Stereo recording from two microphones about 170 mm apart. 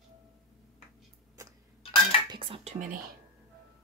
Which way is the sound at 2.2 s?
30° right (ahead or behind).